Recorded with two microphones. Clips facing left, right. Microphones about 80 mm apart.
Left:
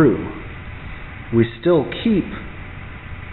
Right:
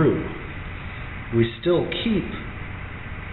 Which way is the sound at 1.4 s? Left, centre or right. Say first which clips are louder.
Left 4 dB; left.